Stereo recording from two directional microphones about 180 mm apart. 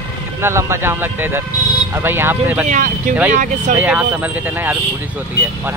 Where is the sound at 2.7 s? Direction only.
50° right (ahead or behind).